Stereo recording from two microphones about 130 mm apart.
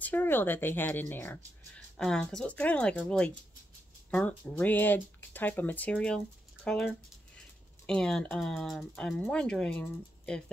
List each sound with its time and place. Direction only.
0.0 s speech: 15° left (ahead or behind)
2.0 s speech: 5° left (ahead or behind)